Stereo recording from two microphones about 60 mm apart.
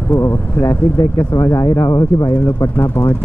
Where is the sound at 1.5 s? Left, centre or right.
Left.